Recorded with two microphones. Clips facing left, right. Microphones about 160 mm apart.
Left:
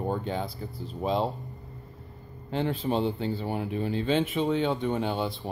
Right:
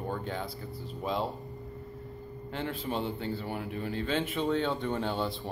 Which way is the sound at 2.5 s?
25° left (ahead or behind).